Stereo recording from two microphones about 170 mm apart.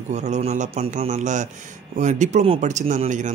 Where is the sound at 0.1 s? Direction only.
45° right (ahead or behind).